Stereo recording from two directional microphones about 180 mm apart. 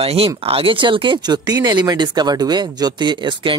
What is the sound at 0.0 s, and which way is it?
Speech, 30° right (ahead or behind).